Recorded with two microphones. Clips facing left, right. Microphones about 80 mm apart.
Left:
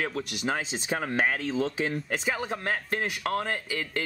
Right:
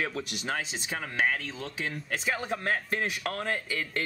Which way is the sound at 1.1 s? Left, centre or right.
Left.